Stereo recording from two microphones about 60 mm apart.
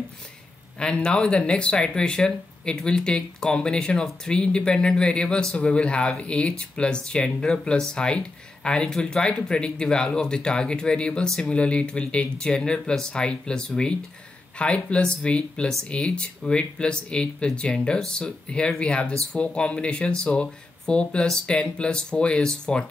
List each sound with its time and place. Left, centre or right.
0.7 s speech: centre